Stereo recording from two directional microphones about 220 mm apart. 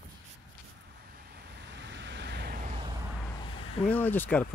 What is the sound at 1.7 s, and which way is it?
Vehicle, 50° right (ahead or behind).